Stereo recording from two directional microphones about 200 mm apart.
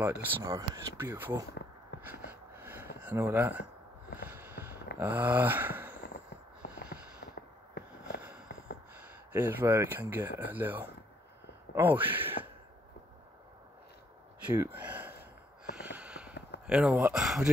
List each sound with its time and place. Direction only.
0.0 s speech: 10° right (ahead or behind)
2.0 s a sound: 10° right (ahead or behind)
3.0 s speech: 10° right (ahead or behind)
4.3 s a sound: 10° right (ahead or behind)
6.6 s a sound: 50° left (ahead or behind)
8.5 s gasp: 60° left (ahead or behind)
9.3 s speech: 10° right (ahead or behind)
14.4 s speech: 10° right (ahead or behind)
15.7 s snort: 5° right (ahead or behind)
16.6 s speech: 5° right (ahead or behind)